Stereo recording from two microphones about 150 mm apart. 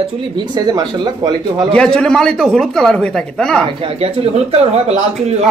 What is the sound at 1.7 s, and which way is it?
Speech, 5° left (ahead or behind).